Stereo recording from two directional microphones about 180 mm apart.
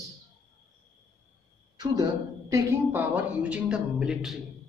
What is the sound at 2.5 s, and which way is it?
A man's voice, 10° right (ahead or behind).